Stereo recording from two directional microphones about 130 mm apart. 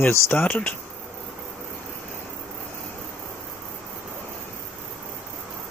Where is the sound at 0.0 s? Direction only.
20° left (ahead or behind).